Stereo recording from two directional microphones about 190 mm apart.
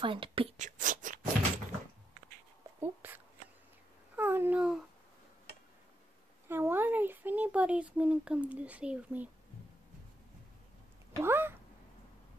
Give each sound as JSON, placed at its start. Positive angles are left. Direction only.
{"t": 0.0, "sound": "speech", "side_deg": -25}
{"t": 2.8, "sound": "a sound", "side_deg": -10}
{"t": 4.2, "sound": "babbling", "side_deg": -10}
{"t": 6.4, "sound": "speech", "side_deg": -10}
{"t": 11.1, "sound": "speech", "side_deg": -10}